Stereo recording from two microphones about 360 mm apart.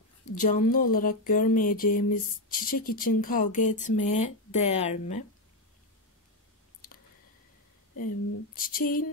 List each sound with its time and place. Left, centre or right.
0.3 s speech: left
8.5 s speech: left